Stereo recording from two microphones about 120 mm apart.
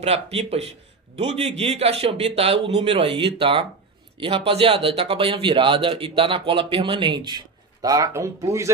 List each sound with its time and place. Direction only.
0.0 s a man's voice: 60° right (ahead or behind); by 8.7 s 25° right (ahead or behind)